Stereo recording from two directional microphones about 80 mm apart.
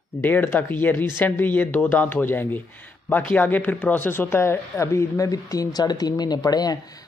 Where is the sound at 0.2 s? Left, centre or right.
Left.